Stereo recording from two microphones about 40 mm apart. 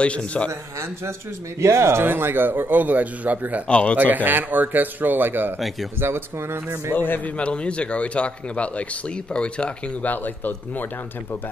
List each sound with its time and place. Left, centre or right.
0.0 s speech: left
1.9 s a man's voice: right
3.6 s speech: left
4.1 s a man's voice: right
5.9 s speech: right
7.0 s a man's voice: left
7.3 s speech: left
10.0 s a man's voice: left